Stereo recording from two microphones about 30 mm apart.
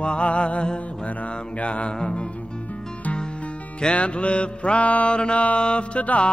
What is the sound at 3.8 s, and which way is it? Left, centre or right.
Music, left.